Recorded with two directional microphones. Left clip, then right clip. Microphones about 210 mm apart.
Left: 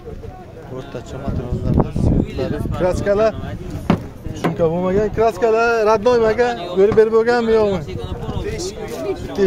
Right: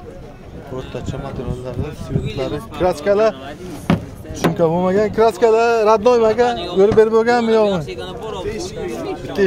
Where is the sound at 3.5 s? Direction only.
50° right (ahead or behind).